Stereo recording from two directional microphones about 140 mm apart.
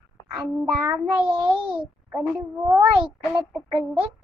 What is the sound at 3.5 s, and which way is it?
Speech, centre (ahead or behind).